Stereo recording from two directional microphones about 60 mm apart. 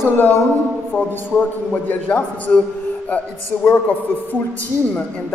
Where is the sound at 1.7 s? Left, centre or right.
Left.